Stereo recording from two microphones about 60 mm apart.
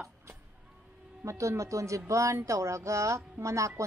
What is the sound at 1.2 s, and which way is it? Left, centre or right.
Speech, right.